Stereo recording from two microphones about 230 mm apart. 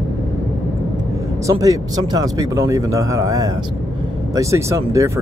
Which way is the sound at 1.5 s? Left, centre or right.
Centre.